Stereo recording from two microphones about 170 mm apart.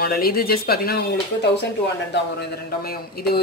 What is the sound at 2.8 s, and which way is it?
Speech, 65° left (ahead or behind).